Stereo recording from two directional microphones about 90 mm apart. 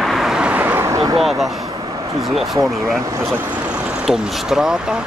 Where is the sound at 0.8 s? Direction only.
40° right (ahead or behind).